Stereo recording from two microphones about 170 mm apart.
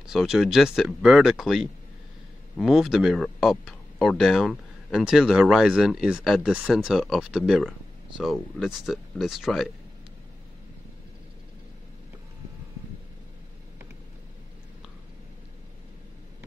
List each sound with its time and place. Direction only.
0.0 s speech: centre (ahead or behind)